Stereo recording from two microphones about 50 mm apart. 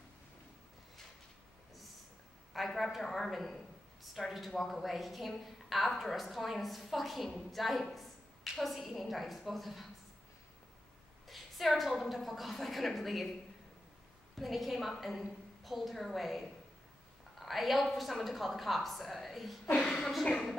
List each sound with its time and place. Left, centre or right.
2.5 s a man's voice: centre
11.2 s a man's voice: centre
14.3 s a man's voice: centre
19.6 s a woman's voice: left
20.0 s a man's voice: centre